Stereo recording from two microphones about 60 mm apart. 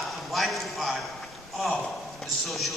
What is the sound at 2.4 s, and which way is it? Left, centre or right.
Speech, centre.